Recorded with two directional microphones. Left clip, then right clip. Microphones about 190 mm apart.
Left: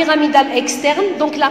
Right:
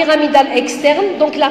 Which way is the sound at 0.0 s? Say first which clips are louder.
Right 2 dB; 20° left (ahead or behind).